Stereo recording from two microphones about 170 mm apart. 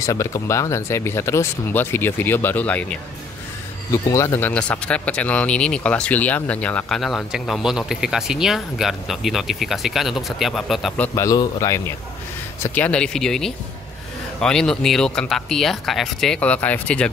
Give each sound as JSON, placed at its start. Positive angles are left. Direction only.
{"t": 0.0, "sound": "speech", "side_deg": 20}
{"t": 11.1, "sound": "speech", "side_deg": 20}
{"t": 12.6, "sound": "speech", "side_deg": 10}